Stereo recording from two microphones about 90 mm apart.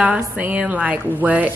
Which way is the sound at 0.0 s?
15° right (ahead or behind).